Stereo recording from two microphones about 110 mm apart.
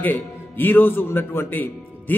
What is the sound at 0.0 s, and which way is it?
Speech, 20° left (ahead or behind).